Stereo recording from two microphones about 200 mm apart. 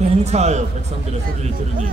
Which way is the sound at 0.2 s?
35° right (ahead or behind).